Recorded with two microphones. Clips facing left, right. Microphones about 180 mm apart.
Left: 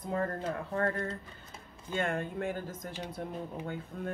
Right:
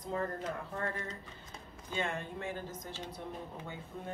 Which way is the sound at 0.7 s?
60° left (ahead or behind).